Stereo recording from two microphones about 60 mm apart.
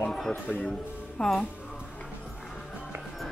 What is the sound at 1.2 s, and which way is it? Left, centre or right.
Speech, centre.